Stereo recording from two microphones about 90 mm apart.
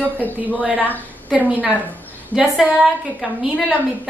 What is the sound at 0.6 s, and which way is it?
A woman's voice, 15° right (ahead or behind).